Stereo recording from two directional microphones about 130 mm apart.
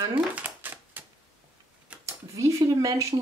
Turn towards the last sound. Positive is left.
turn(degrees=-25)  # may be behind; listen again after turning